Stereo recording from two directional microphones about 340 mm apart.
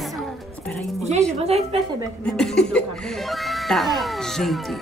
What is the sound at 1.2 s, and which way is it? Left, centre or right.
Music, centre.